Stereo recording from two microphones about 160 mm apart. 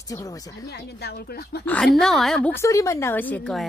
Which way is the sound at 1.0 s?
90° left.